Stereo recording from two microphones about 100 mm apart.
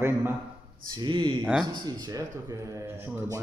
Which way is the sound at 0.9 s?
50° right (ahead or behind).